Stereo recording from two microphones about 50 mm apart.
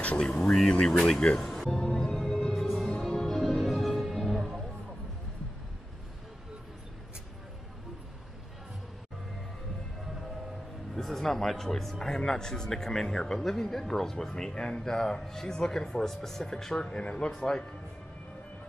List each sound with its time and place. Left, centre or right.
0.0 s speech: left
1.5 s music: centre
1.8 s music: centre
11.0 s speech: centre